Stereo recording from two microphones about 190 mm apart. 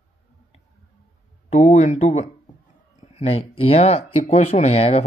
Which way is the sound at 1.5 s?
40° left (ahead or behind).